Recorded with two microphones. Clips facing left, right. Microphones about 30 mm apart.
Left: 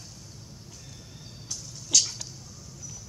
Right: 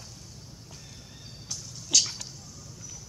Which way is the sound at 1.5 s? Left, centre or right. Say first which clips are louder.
Even; centre.